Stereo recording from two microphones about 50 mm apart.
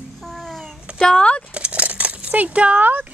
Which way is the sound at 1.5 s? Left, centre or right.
Right.